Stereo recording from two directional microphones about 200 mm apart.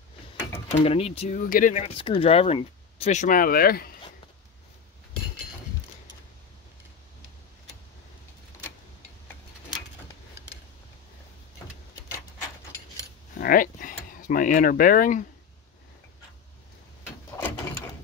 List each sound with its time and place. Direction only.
0.8 s speech: 30° left (ahead or behind)
1.4 s speech: 45° left (ahead or behind)
2.0 s speech: 25° left (ahead or behind); by 3.9 s 50° left (ahead or behind)
13.4 s a sound: 45° left (ahead or behind)